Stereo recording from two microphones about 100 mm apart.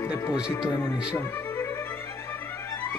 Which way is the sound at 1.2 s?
25° left (ahead or behind).